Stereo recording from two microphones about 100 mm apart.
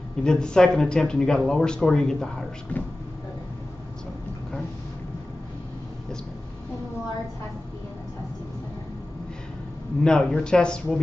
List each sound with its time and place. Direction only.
0.2 s speech: 5° left (ahead or behind)
2.7 s speech: 15° left (ahead or behind)
10.0 s speech: 5° left (ahead or behind)